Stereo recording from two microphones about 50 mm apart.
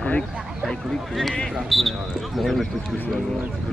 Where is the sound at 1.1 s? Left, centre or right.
Centre.